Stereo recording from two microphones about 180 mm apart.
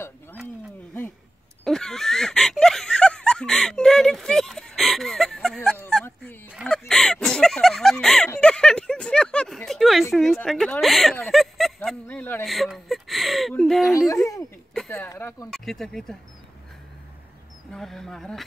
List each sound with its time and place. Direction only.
1.6 s a sound: 5° left (ahead or behind)
6.5 s chicken: centre (ahead or behind)
6.9 s a sound: 5° left (ahead or behind)
10.1 s speech: centre (ahead or behind)
13.9 s speech: 20° left (ahead or behind)
14.7 s speech: 5° left (ahead or behind)
15.5 s speech: centre (ahead or behind)
17.6 s speech: 5° left (ahead or behind)